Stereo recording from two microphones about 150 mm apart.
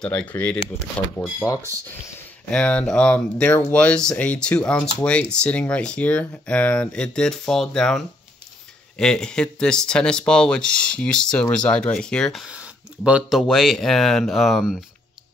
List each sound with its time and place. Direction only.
0.0 s speech: 10° left (ahead or behind)
2.1 s speech: 10° left (ahead or behind)
12.4 s a sound: 10° right (ahead or behind)
13.4 s speech: centre (ahead or behind)